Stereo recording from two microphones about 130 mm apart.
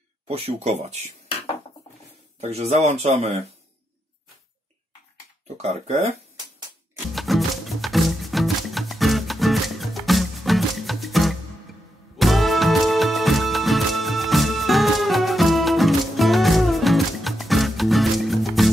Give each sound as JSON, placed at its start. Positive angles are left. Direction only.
{"t": 0.3, "sound": "speech", "side_deg": -50}
{"t": 2.4, "sound": "speech", "side_deg": -55}
{"t": 5.6, "sound": "speech", "side_deg": -55}
{"t": 7.2, "sound": "music", "side_deg": 0}